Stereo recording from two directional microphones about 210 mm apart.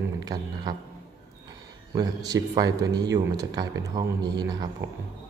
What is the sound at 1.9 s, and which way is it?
Speech, 20° right (ahead or behind).